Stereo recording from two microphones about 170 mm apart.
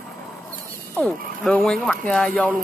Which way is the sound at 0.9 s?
5° left (ahead or behind).